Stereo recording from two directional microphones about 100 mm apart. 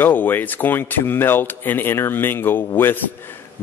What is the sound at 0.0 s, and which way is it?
Speech, 20° left (ahead or behind).